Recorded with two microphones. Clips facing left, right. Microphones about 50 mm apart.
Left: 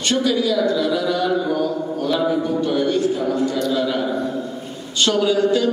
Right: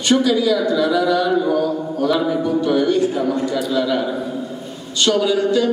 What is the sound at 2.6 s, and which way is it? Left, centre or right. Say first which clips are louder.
Speech: right 3 dB; right.